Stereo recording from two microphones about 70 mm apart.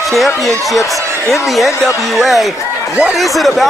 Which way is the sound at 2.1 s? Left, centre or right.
Centre.